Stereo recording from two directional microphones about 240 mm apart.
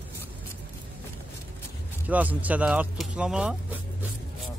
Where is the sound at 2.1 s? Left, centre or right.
Centre.